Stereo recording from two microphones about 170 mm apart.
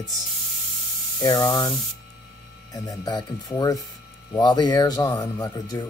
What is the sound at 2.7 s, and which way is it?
Speech, 20° left (ahead or behind).